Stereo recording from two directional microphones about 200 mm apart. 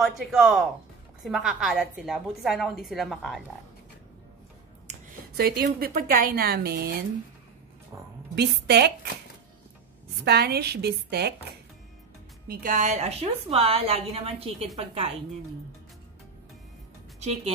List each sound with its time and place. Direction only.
0.0 s a woman's voice: centre (ahead or behind)
5.3 s a woman's voice: 50° right (ahead or behind)
8.4 s a woman's voice: 55° right (ahead or behind)
10.2 s a woman's voice: 55° right (ahead or behind)
12.4 s a woman's voice: 45° right (ahead or behind); by 15.1 s 30° right (ahead or behind)